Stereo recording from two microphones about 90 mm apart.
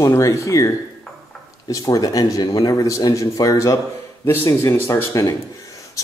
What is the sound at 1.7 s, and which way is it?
Speech, 40° left (ahead or behind).